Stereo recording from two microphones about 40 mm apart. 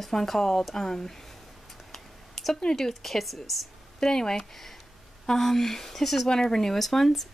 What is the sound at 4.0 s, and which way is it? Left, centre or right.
Speech, centre.